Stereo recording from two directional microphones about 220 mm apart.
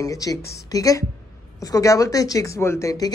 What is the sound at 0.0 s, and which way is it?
A woman's voice, 15° left (ahead or behind).